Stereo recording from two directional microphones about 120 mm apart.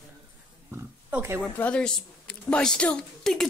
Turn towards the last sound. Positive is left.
turn(degrees=5)  # may be behind; listen again after turning